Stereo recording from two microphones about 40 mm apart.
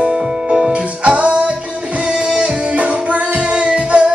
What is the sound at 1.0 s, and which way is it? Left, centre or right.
Music, right.